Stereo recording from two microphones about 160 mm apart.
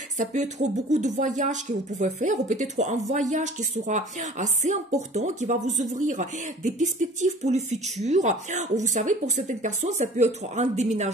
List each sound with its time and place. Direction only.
0.2 s a woman's voice: 50° right (ahead or behind)